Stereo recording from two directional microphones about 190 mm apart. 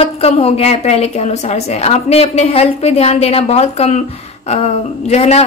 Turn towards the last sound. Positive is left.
turn(degrees=35)  # may be behind; listen again after turning